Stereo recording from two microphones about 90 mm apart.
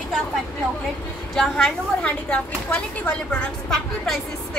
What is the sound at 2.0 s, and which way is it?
Speech, 15° left (ahead or behind).